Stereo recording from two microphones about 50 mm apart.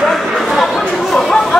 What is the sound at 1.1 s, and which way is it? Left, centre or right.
Chatter, centre.